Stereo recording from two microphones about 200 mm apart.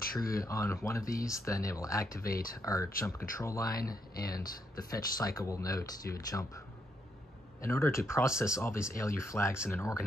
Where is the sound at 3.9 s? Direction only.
50° left (ahead or behind).